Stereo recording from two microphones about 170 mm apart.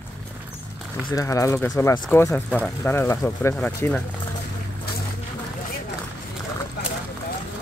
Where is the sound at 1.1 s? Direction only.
20° left (ahead or behind).